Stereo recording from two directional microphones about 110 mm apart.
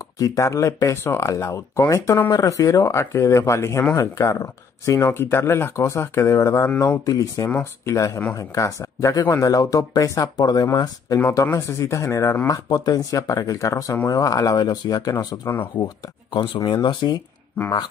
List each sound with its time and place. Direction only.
0.2 s speech: 30° left (ahead or behind)
2.3 s speech: 30° left (ahead or behind)
11.1 s speech: 20° left (ahead or behind); by 17.2 s 40° left (ahead or behind)